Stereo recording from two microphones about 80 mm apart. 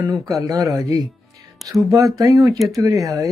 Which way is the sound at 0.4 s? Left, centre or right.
Right.